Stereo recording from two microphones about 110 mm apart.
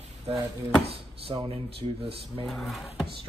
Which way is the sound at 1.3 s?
40° right (ahead or behind).